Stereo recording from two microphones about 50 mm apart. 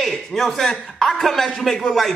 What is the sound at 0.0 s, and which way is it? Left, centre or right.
A man's voice, centre.